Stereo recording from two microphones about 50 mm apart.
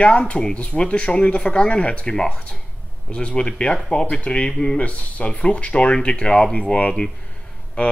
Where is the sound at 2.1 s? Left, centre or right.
Centre.